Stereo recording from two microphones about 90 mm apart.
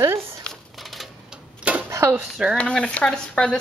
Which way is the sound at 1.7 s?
15° right (ahead or behind).